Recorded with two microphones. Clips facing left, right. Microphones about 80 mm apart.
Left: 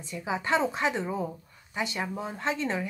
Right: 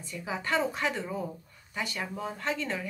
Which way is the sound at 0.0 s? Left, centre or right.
Left.